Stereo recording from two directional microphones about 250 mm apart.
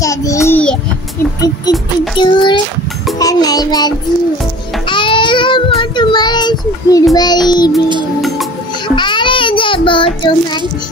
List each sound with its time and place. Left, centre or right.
0.0 s a sound: centre
1.4 s child singing: centre
3.2 s music: centre
5.8 s child singing: centre
8.8 s child singing: centre